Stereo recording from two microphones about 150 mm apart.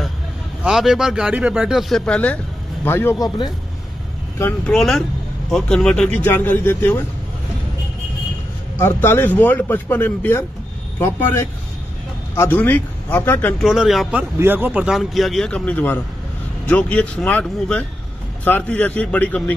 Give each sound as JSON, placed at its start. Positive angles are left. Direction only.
{"t": 0.7, "sound": "speech", "side_deg": -5}
{"t": 4.4, "sound": "speech", "side_deg": 15}
{"t": 4.7, "sound": "speech", "side_deg": 5}
{"t": 8.7, "sound": "speech", "side_deg": 15}
{"t": 13.7, "sound": "speech", "side_deg": 0}
{"t": 14.4, "sound": "speech", "side_deg": -15}